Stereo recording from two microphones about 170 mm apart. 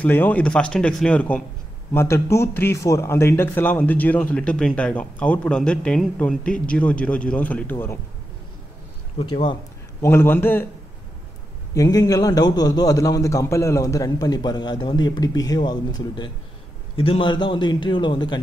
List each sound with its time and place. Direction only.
0.0 s a man's voice: 10° left (ahead or behind)
9.2 s a man's voice: 30° left (ahead or behind)
10.0 s a man's voice: 15° left (ahead or behind)
11.7 s a man's voice: 20° left (ahead or behind)